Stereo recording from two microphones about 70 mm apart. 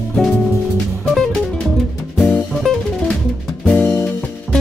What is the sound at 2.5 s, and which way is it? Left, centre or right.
Music, centre.